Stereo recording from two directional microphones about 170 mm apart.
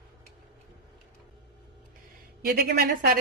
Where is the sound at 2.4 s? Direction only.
60° right (ahead or behind).